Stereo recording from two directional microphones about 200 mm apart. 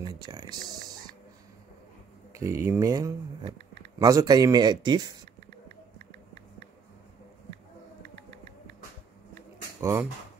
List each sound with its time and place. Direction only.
0.2 s speech: 20° right (ahead or behind)
2.3 s speech: 15° right (ahead or behind)
9.8 s speech: 15° right (ahead or behind)